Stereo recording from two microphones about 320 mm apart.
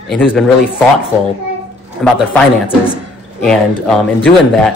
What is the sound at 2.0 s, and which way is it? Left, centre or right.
Speech, centre.